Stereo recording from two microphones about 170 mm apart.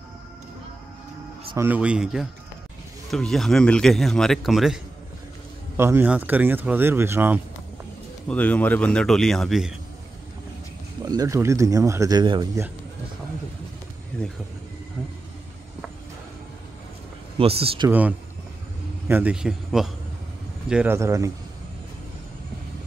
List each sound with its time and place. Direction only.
1.6 s speech: 10° right (ahead or behind)
5.8 s speech: 15° right (ahead or behind)
8.3 s speech: 10° left (ahead or behind)
11.0 s speech: 20° right (ahead or behind)
14.1 s speech: 5° left (ahead or behind)
17.4 s speech: 35° right (ahead or behind)
17.8 s speech: 10° right (ahead or behind)